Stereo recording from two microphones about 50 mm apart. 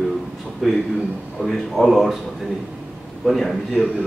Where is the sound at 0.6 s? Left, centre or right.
Centre.